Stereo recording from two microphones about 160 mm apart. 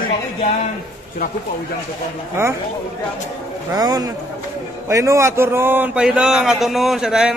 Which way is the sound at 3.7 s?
25° right (ahead or behind).